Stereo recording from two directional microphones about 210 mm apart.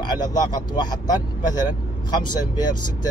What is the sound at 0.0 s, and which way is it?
Speech, 20° left (ahead or behind).